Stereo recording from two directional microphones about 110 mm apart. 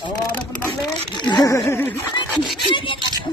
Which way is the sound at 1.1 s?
40° left (ahead or behind).